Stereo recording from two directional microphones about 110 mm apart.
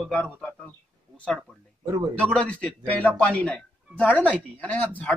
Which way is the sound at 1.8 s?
30° right (ahead or behind).